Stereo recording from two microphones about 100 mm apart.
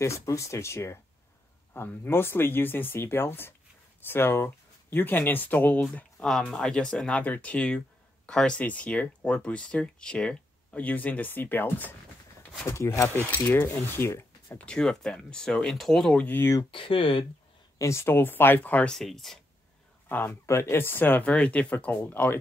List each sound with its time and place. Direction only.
0.0 s speech: 30° left (ahead or behind)
14.6 s speech: 10° left (ahead or behind)
16.7 s speech: 60° left (ahead or behind)
17.7 s speech: 30° left (ahead or behind)
18.9 s speech: centre (ahead or behind)
20.1 s speech: 20° left (ahead or behind)